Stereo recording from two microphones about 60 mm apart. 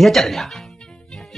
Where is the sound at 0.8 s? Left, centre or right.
Centre.